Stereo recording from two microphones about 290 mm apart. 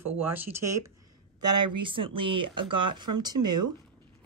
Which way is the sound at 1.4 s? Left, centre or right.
Right.